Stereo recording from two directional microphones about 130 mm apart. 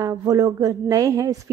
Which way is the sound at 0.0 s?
25° right (ahead or behind).